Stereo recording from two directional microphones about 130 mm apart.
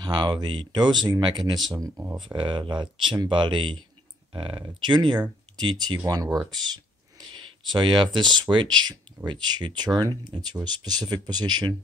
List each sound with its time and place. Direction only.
0.0 s speech: 35° right (ahead or behind)